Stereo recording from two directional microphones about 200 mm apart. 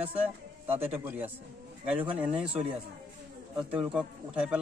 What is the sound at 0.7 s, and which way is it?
A man's voice, 10° right (ahead or behind).